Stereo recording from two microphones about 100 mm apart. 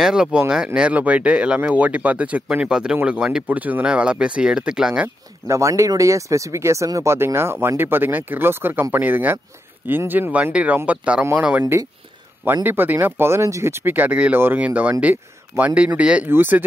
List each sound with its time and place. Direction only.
0.0 s speech: 5° right (ahead or behind)
5.0 s speech: 30° right (ahead or behind); by 11.6 s 15° right (ahead or behind)
12.6 s speech: 20° right (ahead or behind)